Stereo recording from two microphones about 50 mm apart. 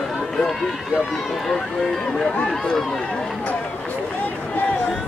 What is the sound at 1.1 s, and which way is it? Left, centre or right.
Speech, centre.